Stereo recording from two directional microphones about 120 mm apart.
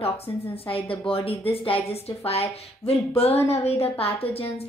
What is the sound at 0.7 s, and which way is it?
A woman's voice, 50° left (ahead or behind).